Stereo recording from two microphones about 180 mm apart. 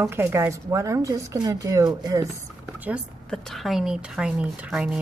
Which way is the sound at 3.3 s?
Centre (ahead or behind).